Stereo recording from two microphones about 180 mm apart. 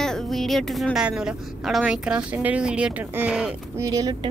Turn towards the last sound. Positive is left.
turn(degrees=-20)  # may be behind; listen again after turning